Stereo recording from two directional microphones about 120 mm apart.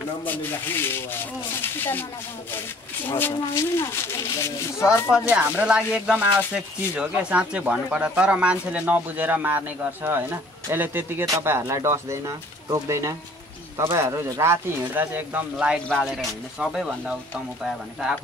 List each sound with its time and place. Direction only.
0.2 s speech: 15° left (ahead or behind)
3.1 s speech: 20° left (ahead or behind)
5.3 s speech: 10° right (ahead or behind)
15.9 s speech: centre (ahead or behind)